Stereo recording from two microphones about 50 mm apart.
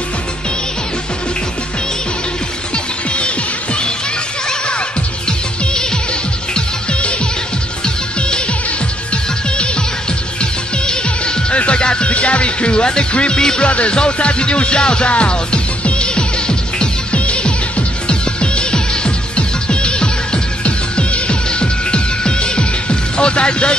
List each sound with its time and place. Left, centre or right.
2.7 s music: left
10.4 s music: centre